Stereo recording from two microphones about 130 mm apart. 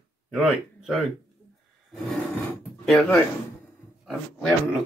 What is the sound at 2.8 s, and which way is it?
Speech, centre (ahead or behind).